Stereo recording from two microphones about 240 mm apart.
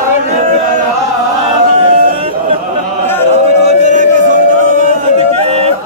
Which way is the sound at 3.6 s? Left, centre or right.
Right.